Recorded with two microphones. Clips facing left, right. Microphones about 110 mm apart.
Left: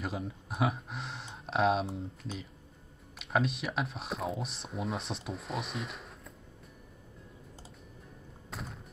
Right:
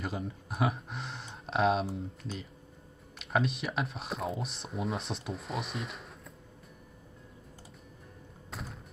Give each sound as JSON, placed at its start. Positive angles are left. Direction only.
{"t": 0.0, "sound": "speech", "side_deg": 0}
{"t": 8.5, "sound": "music", "side_deg": 0}